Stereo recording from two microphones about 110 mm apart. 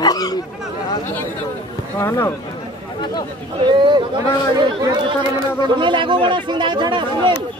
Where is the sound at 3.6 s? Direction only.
45° right (ahead or behind).